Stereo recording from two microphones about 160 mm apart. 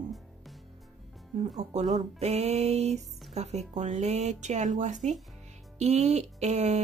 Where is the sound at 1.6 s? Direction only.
45° right (ahead or behind).